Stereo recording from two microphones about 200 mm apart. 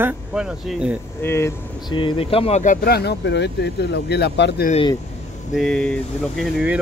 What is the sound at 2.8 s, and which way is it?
Speech, 55° left (ahead or behind).